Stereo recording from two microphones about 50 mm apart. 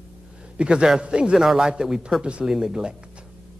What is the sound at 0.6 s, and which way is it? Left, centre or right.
A man's voice, centre.